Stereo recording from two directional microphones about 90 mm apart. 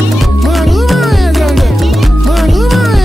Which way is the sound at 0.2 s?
Centre (ahead or behind).